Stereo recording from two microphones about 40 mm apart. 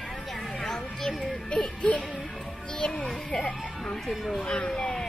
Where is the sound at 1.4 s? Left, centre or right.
Left.